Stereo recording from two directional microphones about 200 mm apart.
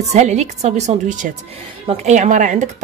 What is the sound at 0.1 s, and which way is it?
Speech, 35° right (ahead or behind).